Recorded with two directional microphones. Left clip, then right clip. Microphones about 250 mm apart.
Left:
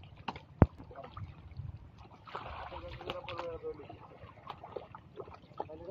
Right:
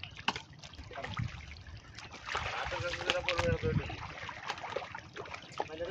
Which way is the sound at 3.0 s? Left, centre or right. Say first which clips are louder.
Right 9 dB; centre.